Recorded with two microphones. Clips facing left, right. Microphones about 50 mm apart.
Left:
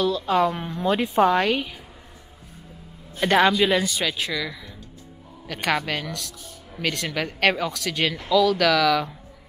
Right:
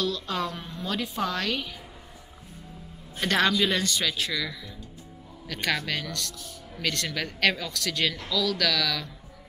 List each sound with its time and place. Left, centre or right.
0.0 s speech: centre
0.6 s a woman's voice: left
3.2 s speech: centre